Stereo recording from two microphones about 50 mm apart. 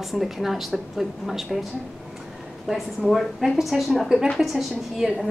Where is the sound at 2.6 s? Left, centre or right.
Centre.